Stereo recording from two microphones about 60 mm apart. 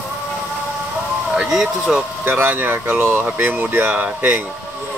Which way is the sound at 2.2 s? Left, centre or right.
Right.